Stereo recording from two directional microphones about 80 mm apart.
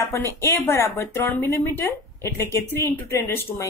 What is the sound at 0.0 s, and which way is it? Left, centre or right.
Speech, left.